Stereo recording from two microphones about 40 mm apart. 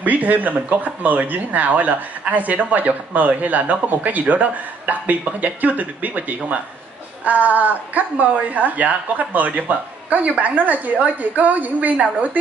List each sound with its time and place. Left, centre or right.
0.0 s speech: right